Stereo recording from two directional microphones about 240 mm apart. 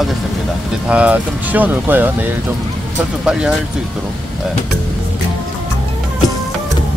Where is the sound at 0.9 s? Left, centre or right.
Centre.